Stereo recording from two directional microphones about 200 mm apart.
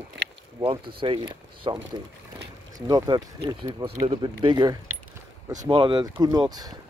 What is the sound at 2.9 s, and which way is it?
Speech, 20° right (ahead or behind).